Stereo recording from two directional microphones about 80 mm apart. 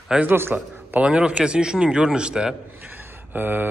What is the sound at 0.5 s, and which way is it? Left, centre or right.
Speech, centre.